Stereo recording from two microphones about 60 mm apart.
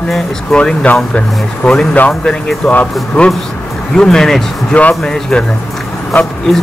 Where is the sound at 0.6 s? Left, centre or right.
Centre.